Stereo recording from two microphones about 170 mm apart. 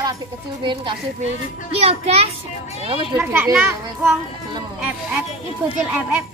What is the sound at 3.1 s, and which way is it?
Speech, 15° right (ahead or behind).